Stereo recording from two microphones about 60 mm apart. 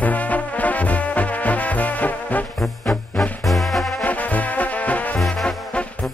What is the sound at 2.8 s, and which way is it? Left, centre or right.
Music, centre.